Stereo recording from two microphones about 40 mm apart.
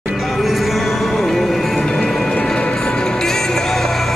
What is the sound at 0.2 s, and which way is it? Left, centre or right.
Music, centre.